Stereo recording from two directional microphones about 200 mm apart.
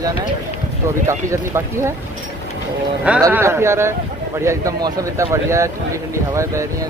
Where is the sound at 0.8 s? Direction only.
15° right (ahead or behind).